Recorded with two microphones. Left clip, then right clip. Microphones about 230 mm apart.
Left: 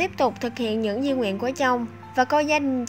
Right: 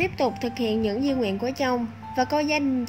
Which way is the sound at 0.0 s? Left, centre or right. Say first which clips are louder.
Left 2 dB; left.